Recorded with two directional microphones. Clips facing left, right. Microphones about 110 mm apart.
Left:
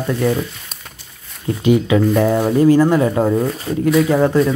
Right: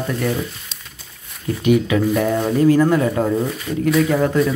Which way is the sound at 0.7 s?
50° left (ahead or behind).